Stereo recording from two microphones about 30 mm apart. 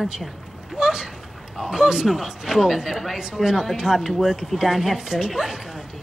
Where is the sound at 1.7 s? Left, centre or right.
Centre.